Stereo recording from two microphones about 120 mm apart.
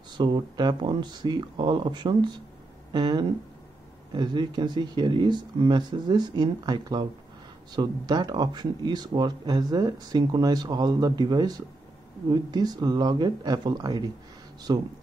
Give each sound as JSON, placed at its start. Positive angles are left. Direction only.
{"t": 0.2, "sound": "speech", "side_deg": -35}